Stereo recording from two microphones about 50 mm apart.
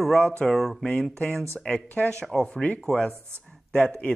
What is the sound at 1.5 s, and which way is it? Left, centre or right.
Speech, left.